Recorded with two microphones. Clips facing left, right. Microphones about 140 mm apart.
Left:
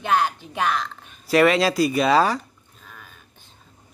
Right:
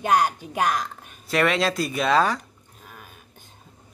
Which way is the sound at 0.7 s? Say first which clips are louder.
Left 1 dB; 10° right (ahead or behind).